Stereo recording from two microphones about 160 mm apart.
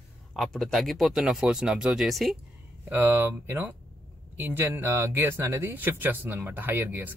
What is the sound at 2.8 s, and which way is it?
Speech, 10° right (ahead or behind).